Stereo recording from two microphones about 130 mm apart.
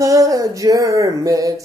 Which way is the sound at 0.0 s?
25° right (ahead or behind).